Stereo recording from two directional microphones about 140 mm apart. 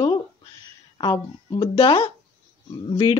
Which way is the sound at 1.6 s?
40° left (ahead or behind).